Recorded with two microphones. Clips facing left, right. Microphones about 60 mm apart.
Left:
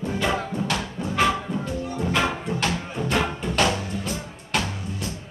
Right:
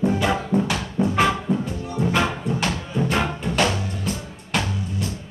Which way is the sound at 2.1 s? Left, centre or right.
Centre.